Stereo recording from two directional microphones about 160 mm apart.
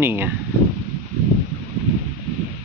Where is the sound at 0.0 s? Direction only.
15° right (ahead or behind).